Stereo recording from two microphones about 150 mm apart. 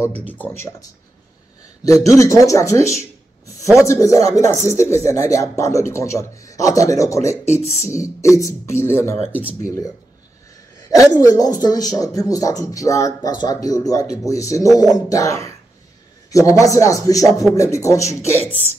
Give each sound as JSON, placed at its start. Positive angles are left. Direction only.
{"t": 0.3, "sound": "speech", "side_deg": 10}
{"t": 1.9, "sound": "speech", "side_deg": 20}
{"t": 7.6, "sound": "speech", "side_deg": 45}
{"t": 8.0, "sound": "speech", "side_deg": 20}
{"t": 10.9, "sound": "speech", "side_deg": 25}
{"t": 18.4, "sound": "speech", "side_deg": -45}